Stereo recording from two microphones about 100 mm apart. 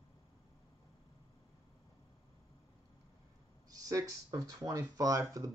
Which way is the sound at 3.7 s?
35° right (ahead or behind).